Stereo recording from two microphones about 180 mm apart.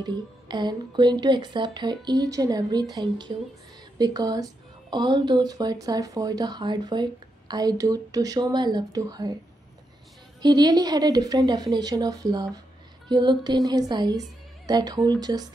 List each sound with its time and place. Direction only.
0.0 s speech: 25° right (ahead or behind)
10.4 s speech: 25° right (ahead or behind)